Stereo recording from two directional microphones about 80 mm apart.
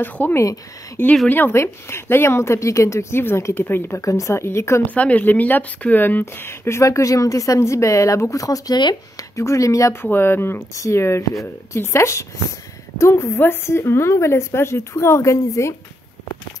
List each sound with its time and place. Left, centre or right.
0.0 s speech: left
4.0 s speech: left
4.9 s speech: centre; by 9.9 s left
10.0 s speech: left